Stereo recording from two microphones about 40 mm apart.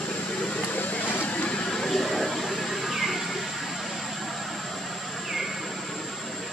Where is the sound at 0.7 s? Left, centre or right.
Left.